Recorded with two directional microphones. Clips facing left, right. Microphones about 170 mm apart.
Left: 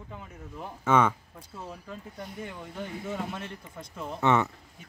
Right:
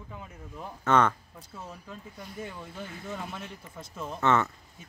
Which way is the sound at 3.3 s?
5° right (ahead or behind).